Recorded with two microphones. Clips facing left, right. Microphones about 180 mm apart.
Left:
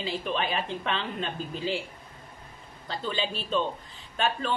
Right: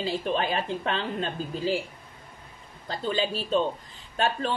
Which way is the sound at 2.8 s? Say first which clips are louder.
Right 3 dB; 40° right (ahead or behind).